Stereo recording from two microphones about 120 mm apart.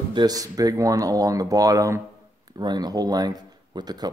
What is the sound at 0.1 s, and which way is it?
Speech, 35° right (ahead or behind).